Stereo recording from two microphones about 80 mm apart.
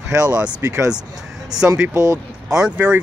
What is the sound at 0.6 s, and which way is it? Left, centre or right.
Speech, right.